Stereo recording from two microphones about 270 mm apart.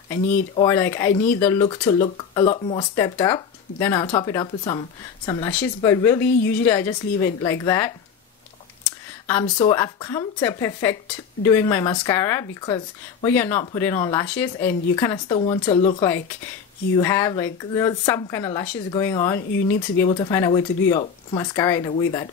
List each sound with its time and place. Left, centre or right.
0.1 s speech: centre
9.3 s speech: centre